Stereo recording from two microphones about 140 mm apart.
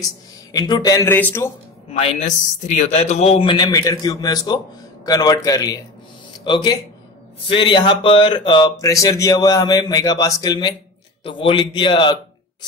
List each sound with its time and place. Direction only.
0.5 s speech: 25° left (ahead or behind)
1.1 s a man's voice: 15° left (ahead or behind)
2.0 s a man's voice: 50° left (ahead or behind)
3.5 s a man's voice: 25° left (ahead or behind)